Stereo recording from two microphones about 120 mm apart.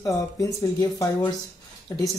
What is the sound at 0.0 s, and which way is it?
Speech, 25° left (ahead or behind).